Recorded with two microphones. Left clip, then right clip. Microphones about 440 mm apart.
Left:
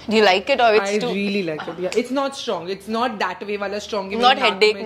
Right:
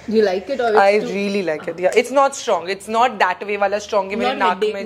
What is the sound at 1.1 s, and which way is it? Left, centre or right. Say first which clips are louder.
A woman's voice: right 3 dB; right.